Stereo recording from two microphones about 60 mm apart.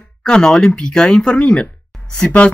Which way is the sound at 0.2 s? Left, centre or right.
Centre.